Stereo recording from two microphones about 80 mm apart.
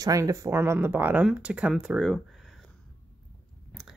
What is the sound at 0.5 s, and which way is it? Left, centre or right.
Speech, right.